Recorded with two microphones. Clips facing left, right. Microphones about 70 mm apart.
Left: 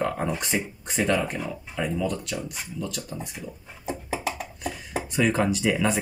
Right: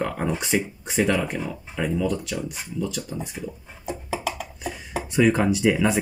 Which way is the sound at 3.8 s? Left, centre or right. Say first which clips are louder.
Right 1 dB; left.